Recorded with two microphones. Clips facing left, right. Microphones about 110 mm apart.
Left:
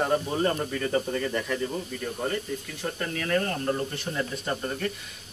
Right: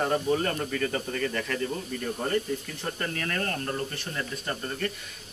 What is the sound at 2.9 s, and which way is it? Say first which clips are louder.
Speech: left 6 dB; 5° left (ahead or behind).